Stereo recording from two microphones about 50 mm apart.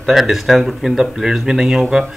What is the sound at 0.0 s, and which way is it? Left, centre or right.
Speech, centre.